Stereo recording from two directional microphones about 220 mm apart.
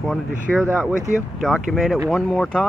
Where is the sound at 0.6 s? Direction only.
10° right (ahead or behind).